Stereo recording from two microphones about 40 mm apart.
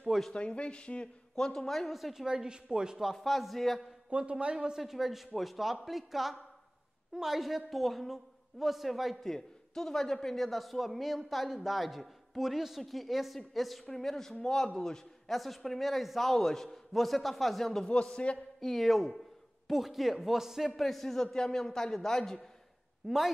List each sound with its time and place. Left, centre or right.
0.3 s speech: left
1.3 s a man's voice: centre
2.1 s a woman's voice: centre
3.0 s a man's voice: centre
4.1 s a woman's voice: right
4.7 s a man's voice: centre
9.2 s a man's voice: centre
15.2 s a man's voice: centre
18.3 s speech: left
18.6 s a man's voice: centre
20.8 s a man's voice: centre
23.0 s a man's voice: centre